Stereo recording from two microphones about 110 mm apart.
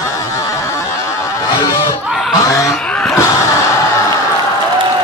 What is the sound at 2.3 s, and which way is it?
Snicker, 30° left (ahead or behind).